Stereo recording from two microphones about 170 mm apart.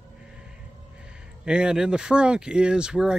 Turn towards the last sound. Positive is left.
turn(degrees=-5)  # may be behind; listen again after turning